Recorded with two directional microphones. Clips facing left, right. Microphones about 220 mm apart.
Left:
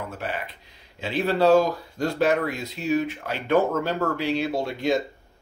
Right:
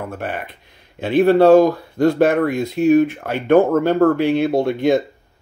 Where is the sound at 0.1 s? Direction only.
55° right (ahead or behind).